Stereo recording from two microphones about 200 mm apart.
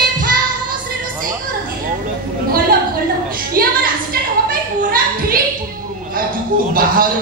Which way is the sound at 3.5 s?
45° right (ahead or behind).